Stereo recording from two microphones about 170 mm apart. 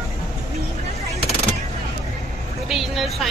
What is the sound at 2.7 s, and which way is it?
Speech, centre (ahead or behind).